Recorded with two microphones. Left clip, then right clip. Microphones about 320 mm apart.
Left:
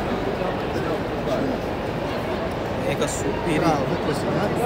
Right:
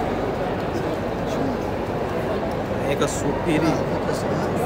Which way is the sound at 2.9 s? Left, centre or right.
Right.